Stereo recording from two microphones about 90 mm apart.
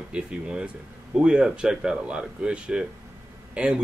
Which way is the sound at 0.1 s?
10° right (ahead or behind).